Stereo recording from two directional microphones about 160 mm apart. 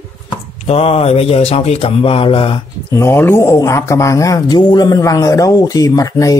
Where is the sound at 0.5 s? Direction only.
40° left (ahead or behind).